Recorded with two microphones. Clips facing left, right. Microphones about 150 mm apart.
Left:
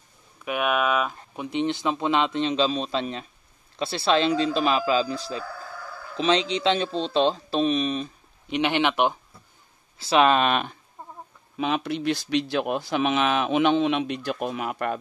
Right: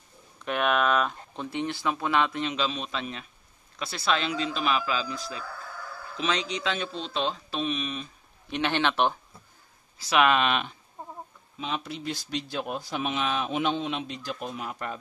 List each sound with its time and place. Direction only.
0.5 s speech: 5° left (ahead or behind); by 8.1 s 35° left (ahead or behind)
8.5 s a man's voice: 15° left (ahead or behind)
9.9 s speech: 30° left (ahead or behind); by 10.8 s 45° left (ahead or behind)
11.5 s speech: 70° left (ahead or behind)